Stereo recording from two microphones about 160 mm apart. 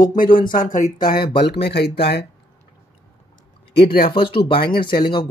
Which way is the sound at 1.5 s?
90° left.